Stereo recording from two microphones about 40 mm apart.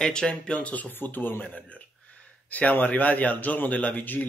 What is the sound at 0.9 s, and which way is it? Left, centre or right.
Speech, left.